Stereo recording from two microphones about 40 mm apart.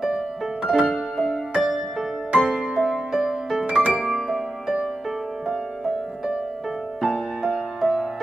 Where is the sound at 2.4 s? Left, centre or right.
Centre.